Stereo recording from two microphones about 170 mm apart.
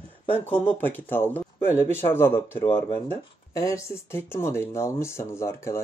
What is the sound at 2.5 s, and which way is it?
Speech, 30° left (ahead or behind).